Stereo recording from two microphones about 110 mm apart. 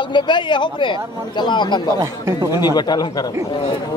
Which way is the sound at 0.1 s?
45° left (ahead or behind).